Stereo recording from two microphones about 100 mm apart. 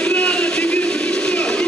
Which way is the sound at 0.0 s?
10° left (ahead or behind).